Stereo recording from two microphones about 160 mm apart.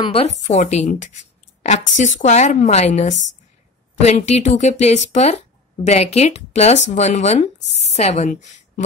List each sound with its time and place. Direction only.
0.0 s a woman's voice: 40° left (ahead or behind)